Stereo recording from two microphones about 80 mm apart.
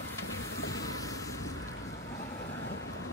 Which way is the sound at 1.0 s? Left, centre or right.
Left.